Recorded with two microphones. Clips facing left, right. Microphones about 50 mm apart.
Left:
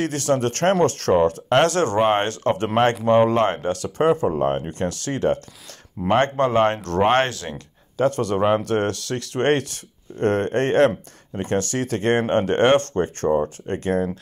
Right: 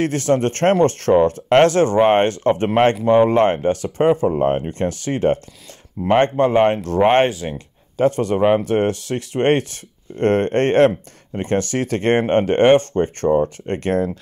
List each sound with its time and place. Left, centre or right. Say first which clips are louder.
0.0 s speech: right 3 dB; right
10.1 s speech: right 4 dB; right
13.0 s speech: right 3 dB; right